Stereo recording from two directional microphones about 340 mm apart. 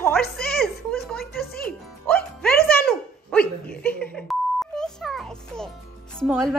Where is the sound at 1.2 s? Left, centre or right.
Left.